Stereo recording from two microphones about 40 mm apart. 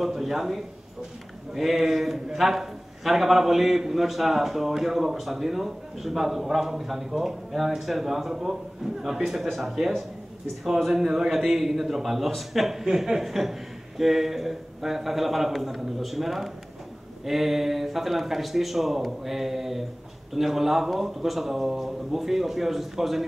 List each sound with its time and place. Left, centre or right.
0.0 s a man's voice: centre